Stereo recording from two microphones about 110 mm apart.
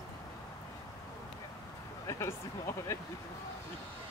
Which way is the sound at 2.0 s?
30° left (ahead or behind).